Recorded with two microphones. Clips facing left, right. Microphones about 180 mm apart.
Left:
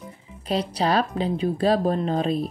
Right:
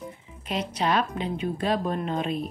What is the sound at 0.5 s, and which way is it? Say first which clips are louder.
A woman's voice: left 3 dB; 35° left (ahead or behind).